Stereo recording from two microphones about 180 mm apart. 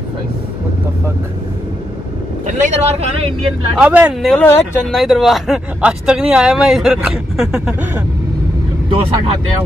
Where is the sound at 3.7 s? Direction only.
5° right (ahead or behind).